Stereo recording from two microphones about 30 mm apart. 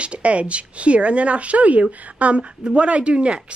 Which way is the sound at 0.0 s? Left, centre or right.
Right.